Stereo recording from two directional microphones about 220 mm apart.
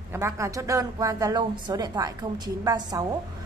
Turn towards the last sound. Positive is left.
turn(degrees=-15)  # may be behind; listen again after turning